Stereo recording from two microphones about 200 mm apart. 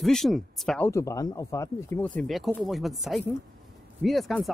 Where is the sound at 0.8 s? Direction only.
15° left (ahead or behind).